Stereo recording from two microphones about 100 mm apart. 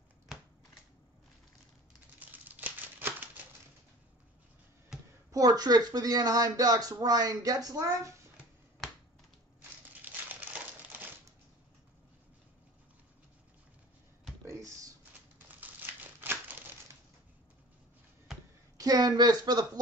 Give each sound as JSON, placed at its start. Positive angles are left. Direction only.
{"t": 2.1, "sound": "crumpling", "side_deg": -15}
{"t": 5.3, "sound": "speech", "side_deg": -40}
{"t": 9.6, "sound": "crushing", "side_deg": -15}
{"t": 14.4, "sound": "computer keyboard", "side_deg": -30}
{"t": 15.3, "sound": "crumpling", "side_deg": -20}
{"t": 18.8, "sound": "speech", "side_deg": -40}